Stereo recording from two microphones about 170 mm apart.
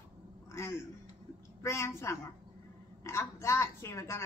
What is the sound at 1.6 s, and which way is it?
A woman's voice, 15° left (ahead or behind).